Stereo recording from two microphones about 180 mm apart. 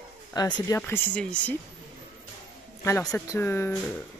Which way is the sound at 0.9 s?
5° left (ahead or behind).